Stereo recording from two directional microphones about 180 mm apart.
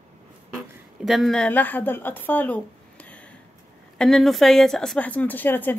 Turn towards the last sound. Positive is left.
turn(degrees=10)  # may be behind; listen again after turning